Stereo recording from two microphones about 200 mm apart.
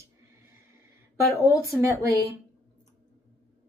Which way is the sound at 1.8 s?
15° right (ahead or behind).